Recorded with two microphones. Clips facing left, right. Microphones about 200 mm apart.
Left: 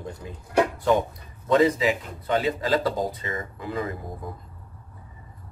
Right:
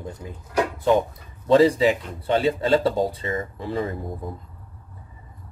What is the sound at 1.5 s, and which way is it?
A man's voice, 30° right (ahead or behind).